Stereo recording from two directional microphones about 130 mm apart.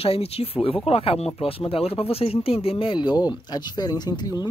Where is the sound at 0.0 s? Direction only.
50° left (ahead or behind).